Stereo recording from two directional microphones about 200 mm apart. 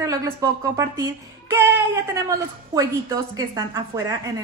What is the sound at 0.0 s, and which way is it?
Speech, 15° right (ahead or behind).